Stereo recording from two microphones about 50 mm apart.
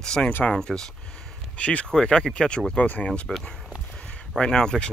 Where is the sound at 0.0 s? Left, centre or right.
Centre.